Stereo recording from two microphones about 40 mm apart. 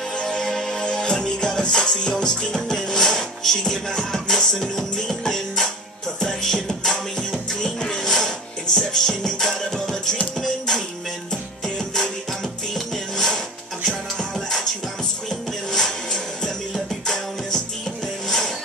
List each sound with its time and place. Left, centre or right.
0.2 s music: centre
0.6 s music: centre
0.8 s music: left
11.6 s music: centre